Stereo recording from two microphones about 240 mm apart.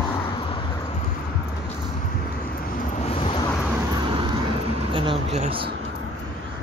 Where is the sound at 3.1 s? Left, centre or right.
Left.